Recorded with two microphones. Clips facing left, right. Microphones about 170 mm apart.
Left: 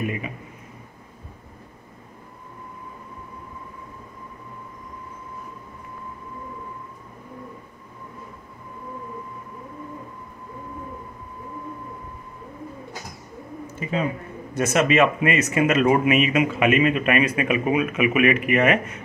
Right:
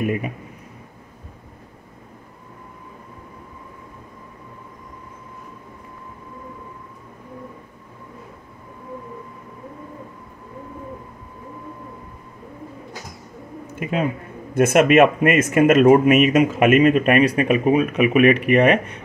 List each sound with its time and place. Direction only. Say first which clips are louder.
0.0 s speech: right 5 dB; 50° right (ahead or behind)
13.7 s a sound: right 3 dB; 60° right (ahead or behind)
14.5 s speech: right 6 dB; 55° right (ahead or behind); by 18.8 s 35° right (ahead or behind)